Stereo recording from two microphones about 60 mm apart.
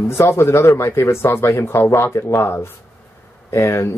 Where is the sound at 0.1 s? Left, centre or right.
Left.